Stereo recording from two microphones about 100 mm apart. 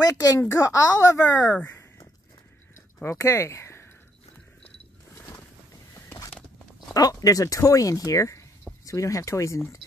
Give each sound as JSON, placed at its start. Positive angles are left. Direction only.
{"t": 0.0, "sound": "speech", "side_deg": 35}
{"t": 1.5, "sound": "a sound", "side_deg": 20}
{"t": 3.0, "sound": "speech", "side_deg": 25}
{"t": 6.9, "sound": "speech", "side_deg": 40}